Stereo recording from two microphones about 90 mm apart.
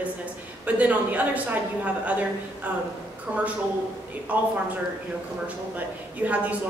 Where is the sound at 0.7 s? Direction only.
15° right (ahead or behind).